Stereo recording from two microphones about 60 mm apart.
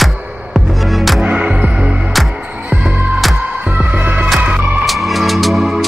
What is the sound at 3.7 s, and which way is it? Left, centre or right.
Music, right.